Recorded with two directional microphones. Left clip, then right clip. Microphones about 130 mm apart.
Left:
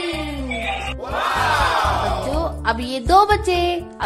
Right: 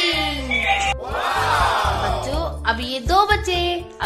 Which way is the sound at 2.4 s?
40° left (ahead or behind).